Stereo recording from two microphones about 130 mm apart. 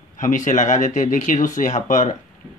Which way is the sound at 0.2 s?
75° left (ahead or behind).